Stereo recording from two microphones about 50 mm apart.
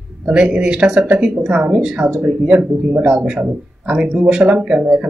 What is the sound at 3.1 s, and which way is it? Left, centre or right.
Speech, centre.